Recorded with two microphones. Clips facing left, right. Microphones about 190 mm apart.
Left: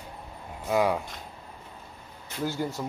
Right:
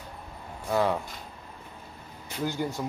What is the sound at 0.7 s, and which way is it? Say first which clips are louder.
Speech: left 1 dB; 10° left (ahead or behind).